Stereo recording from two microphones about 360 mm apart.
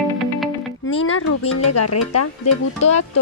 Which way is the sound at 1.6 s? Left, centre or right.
Left.